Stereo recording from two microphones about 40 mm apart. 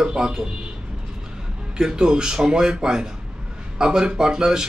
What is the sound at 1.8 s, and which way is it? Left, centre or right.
A man's voice, centre.